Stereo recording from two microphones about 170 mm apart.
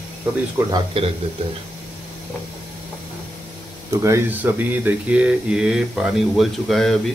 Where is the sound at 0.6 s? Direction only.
15° right (ahead or behind).